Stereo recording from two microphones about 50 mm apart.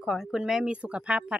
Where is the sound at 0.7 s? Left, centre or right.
Right.